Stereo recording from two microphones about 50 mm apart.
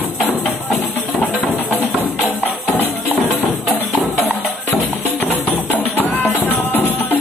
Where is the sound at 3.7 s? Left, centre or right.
Left.